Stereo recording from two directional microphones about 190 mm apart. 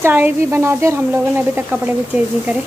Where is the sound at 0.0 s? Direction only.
10° right (ahead or behind).